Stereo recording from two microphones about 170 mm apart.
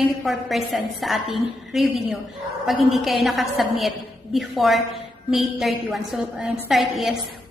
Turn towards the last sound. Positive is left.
turn(degrees=0)  # may be behind; listen again after turning